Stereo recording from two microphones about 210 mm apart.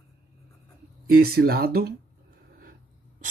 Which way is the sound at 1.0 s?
45° right (ahead or behind).